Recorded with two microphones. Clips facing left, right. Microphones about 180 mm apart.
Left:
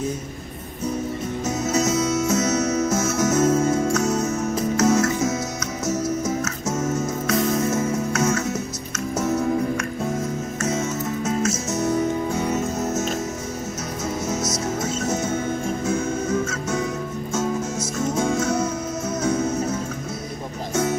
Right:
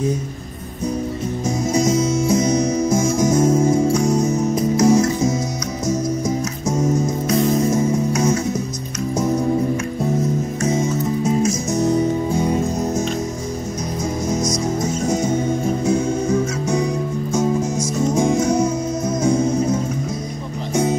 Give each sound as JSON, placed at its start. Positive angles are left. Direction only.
{"t": 1.4, "sound": "music", "side_deg": -10}
{"t": 7.2, "sound": "music", "side_deg": -30}
{"t": 7.7, "sound": "music", "side_deg": -15}
{"t": 10.6, "sound": "music", "side_deg": -15}
{"t": 14.8, "sound": "music", "side_deg": -15}